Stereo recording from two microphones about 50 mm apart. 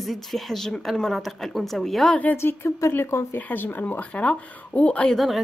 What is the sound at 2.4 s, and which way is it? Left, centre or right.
Speech, left.